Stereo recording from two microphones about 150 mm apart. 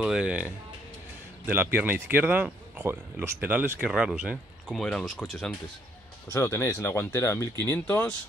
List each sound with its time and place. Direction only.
0.0 s speech: 5° right (ahead or behind)
1.5 s speech: 15° right (ahead or behind)
4.6 s speech: 5° left (ahead or behind)
6.3 s speech: 15° left (ahead or behind)